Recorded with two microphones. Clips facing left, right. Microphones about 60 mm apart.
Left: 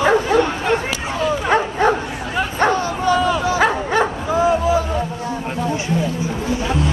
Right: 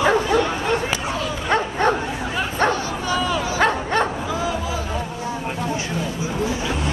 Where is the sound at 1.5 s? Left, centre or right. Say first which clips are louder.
Left 1 dB; centre.